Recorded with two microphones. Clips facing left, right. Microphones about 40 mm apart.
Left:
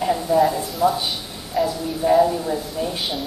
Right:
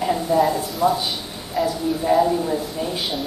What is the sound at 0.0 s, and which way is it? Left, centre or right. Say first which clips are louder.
Speech: left 1 dB; centre.